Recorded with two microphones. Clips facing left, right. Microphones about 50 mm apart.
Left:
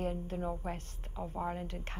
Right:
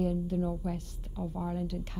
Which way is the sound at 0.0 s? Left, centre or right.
Left.